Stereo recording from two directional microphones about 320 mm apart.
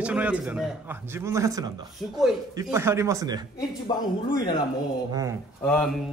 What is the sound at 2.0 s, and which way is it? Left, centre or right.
Speech, centre.